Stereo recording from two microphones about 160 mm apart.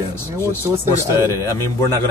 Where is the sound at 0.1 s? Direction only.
15° left (ahead or behind).